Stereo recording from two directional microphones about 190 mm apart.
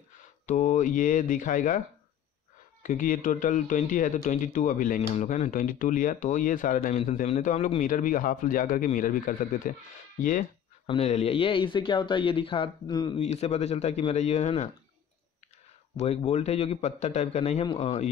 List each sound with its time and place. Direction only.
0.5 s speech: 45° left (ahead or behind)
2.8 s speech: 45° left (ahead or behind)
10.9 s speech: 35° left (ahead or behind)
13.2 s speech: 35° left (ahead or behind)
16.0 s speech: 35° left (ahead or behind)